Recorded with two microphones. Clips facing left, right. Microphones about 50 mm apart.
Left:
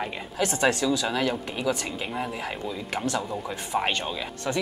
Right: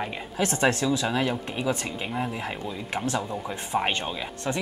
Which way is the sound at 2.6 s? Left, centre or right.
Right.